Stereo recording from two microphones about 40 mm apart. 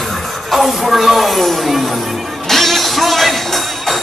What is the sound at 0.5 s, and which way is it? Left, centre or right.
Speech, centre.